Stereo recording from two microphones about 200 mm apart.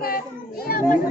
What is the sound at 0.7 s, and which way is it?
Children playing, 50° left (ahead or behind).